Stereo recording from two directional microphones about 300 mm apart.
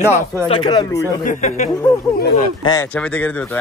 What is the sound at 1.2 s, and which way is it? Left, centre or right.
Speech, left.